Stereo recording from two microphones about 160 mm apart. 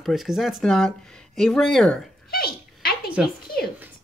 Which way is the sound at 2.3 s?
70° left (ahead or behind).